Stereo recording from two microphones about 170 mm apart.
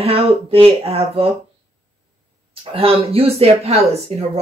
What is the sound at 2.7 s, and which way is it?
Speech, 35° right (ahead or behind).